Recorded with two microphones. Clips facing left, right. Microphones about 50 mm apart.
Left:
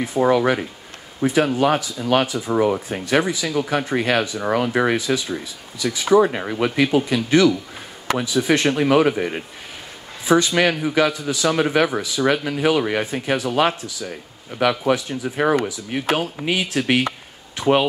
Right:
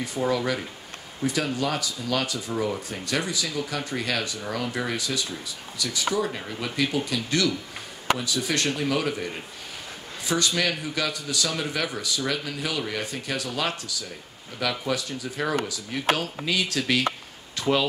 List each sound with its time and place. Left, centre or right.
0.2 s speech: left
2.2 s speech: left
3.9 s speech: left